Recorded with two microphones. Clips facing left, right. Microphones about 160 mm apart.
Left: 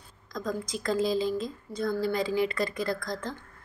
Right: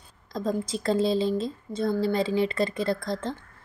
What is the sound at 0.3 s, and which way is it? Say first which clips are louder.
Speech: right 4 dB; 30° right (ahead or behind).